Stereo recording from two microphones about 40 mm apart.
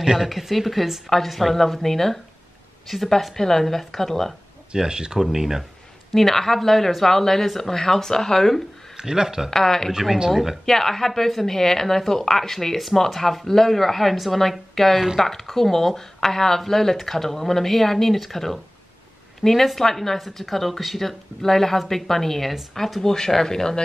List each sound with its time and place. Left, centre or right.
0.0 s speech: centre
4.7 s speech: right
6.1 s speech: centre
8.9 s speech: centre
9.5 s speech: centre
10.3 s speech: centre
10.6 s speech: centre
20.2 s speech: centre